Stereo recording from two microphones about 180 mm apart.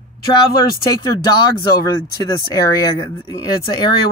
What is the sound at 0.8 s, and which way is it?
Speech, 25° left (ahead or behind).